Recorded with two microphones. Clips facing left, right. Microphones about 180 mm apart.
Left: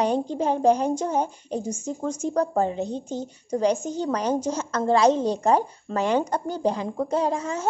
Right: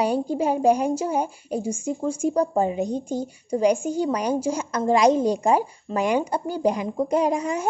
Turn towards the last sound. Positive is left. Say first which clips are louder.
# right 3 dB
turn(degrees=-15)  # may be behind; listen again after turning